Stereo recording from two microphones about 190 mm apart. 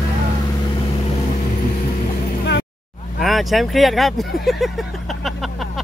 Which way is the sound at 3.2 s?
Centre (ahead or behind).